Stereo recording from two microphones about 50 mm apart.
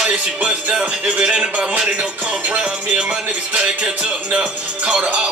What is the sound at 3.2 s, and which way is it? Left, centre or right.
Music, right.